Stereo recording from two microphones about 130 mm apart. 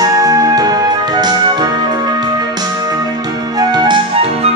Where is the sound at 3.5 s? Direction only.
35° right (ahead or behind).